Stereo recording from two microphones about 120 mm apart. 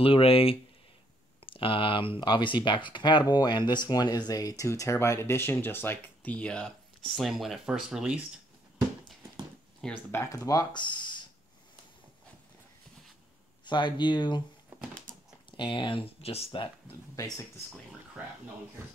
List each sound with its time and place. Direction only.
0.0 s speech: 50° left (ahead or behind); by 8.2 s 5° right (ahead or behind)
9.8 s speech: 5° left (ahead or behind)
10.1 s speech: 25° left (ahead or behind)
13.7 s speech: 40° left (ahead or behind)
15.5 s speech: 45° left (ahead or behind)
17.1 s speech: 25° left (ahead or behind)